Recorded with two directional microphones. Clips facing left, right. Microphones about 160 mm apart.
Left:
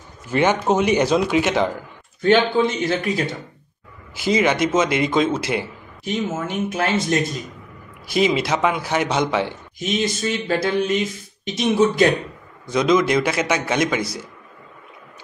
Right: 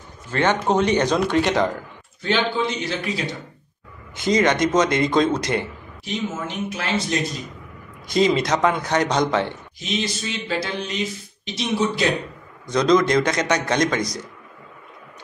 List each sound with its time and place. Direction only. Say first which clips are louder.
0.3 s a man's voice: left 2 dB; 10° left (ahead or behind)
2.2 s speech: left 6 dB; 50° left (ahead or behind)
4.1 s a man's voice: even; 5° left (ahead or behind)
6.4 s speech: left 5 dB; 50° left (ahead or behind)
8.1 s a man's voice: even; 5° left (ahead or behind)
9.8 s speech: left 4 dB; 50° left (ahead or behind)
12.6 s a man's voice: even; 5° left (ahead or behind)